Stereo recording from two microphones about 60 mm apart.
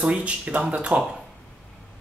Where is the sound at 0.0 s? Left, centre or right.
Centre.